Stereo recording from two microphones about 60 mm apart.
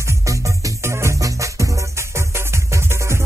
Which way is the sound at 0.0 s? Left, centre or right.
Right.